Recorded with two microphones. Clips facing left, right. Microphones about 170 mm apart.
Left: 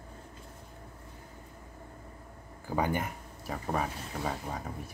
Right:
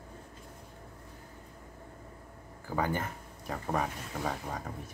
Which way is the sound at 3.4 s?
5° left (ahead or behind).